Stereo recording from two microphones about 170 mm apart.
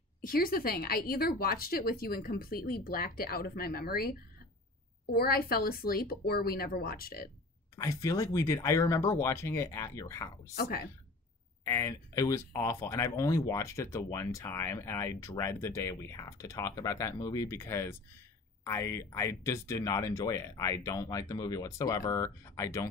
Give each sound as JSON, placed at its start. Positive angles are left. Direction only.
{"t": 0.2, "sound": "a woman's voice", "side_deg": 60}
{"t": 7.7, "sound": "speech", "side_deg": 20}
{"t": 10.5, "sound": "a woman's voice", "side_deg": 65}
{"t": 11.6, "sound": "speech", "side_deg": 15}